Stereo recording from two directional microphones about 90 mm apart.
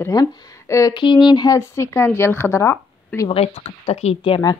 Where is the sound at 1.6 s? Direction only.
30° left (ahead or behind).